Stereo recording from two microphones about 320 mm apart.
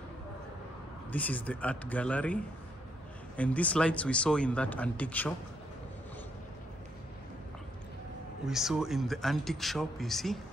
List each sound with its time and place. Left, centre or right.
1.1 s speech: centre
8.5 s speech: centre